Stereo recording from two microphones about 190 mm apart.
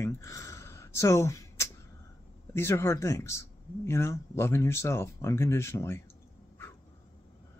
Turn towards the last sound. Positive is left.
turn(degrees=15)  # may be behind; listen again after turning